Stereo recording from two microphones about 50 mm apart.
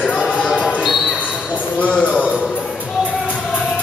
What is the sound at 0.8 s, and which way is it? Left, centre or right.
Basketball bounce, centre.